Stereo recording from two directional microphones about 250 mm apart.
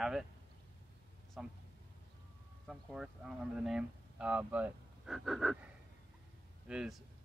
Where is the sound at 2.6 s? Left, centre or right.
Centre.